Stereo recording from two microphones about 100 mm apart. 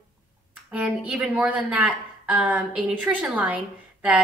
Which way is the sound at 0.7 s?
10° right (ahead or behind).